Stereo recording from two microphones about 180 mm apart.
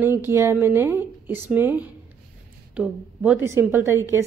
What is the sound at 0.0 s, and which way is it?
A woman's voice, 10° right (ahead or behind).